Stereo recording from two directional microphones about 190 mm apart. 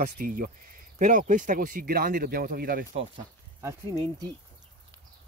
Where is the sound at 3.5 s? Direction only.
15° right (ahead or behind).